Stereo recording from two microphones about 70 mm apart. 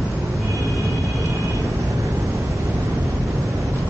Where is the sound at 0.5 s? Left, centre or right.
Right.